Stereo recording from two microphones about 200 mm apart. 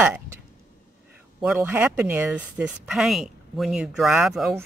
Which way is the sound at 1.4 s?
5° right (ahead or behind).